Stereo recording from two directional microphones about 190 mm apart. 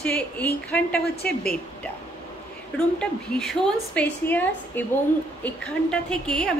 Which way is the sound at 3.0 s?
5° left (ahead or behind).